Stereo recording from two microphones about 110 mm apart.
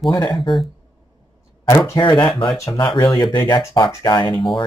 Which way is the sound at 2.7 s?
45° left (ahead or behind).